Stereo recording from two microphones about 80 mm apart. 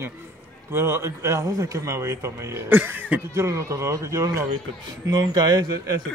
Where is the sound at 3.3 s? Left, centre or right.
Right.